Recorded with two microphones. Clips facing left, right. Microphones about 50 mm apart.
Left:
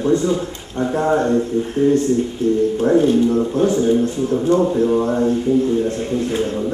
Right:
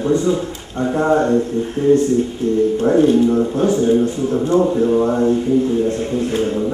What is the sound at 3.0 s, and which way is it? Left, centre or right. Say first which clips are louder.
Speech: right 3 dB; centre.